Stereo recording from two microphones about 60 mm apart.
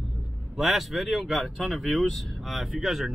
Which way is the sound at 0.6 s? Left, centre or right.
Centre.